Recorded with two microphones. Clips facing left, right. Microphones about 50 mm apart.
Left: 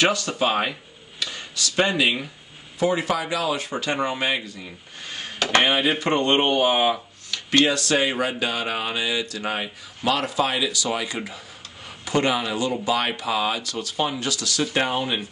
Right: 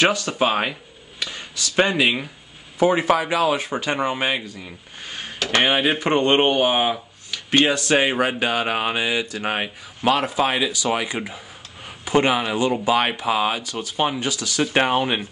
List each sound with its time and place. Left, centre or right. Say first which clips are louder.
0.0 s speech: right 2 dB; right
5.7 s speech: right 2 dB; right
14.7 s speech: right 6 dB; right